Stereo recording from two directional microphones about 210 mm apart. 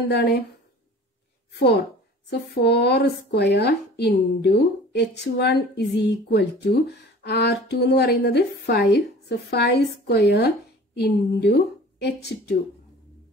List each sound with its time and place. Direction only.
0.1 s speech: 50° left (ahead or behind)
1.5 s a woman's voice: 50° left (ahead or behind)